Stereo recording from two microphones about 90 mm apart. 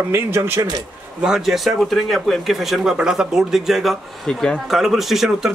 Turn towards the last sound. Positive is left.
turn(degrees=-5)  # may be behind; listen again after turning